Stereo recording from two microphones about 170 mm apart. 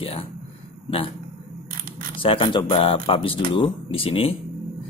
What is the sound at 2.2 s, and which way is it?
Speech, 30° left (ahead or behind).